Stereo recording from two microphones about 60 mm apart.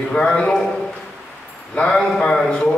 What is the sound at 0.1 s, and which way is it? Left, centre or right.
Speech, centre.